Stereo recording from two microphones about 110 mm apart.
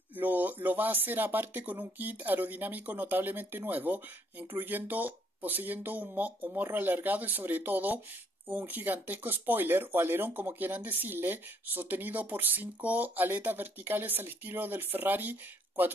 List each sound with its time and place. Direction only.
0.1 s speech: 15° right (ahead or behind)